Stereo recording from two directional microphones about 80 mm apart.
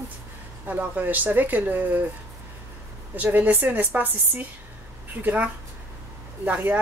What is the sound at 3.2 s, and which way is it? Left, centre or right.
Speech, right.